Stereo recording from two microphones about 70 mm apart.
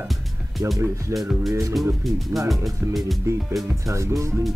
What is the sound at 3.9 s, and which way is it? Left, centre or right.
Speech, right.